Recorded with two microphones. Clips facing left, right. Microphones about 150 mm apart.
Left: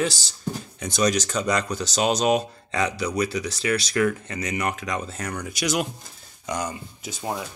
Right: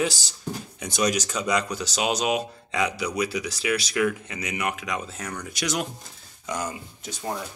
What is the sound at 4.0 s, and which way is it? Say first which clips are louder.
Speech: left 2 dB; 40° left (ahead or behind).